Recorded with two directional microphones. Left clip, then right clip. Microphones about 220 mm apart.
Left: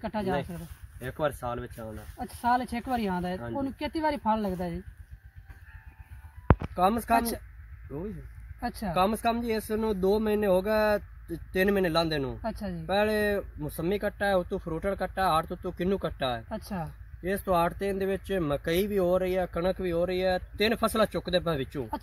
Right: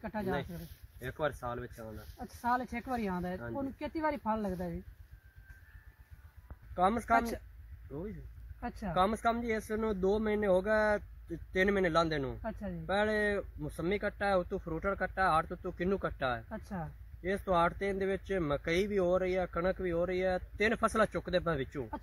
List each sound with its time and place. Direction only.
0.0 s speech: centre (ahead or behind)
6.7 s speech: 5° left (ahead or behind)
7.2 s speech: 5° right (ahead or behind)
8.5 s speech: 5° right (ahead or behind)
8.9 s speech: 5° left (ahead or behind)
12.4 s speech: 5° right (ahead or behind)
12.8 s speech: 10° left (ahead or behind)